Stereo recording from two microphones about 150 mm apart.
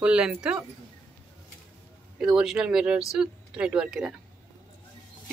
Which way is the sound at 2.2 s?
5° right (ahead or behind).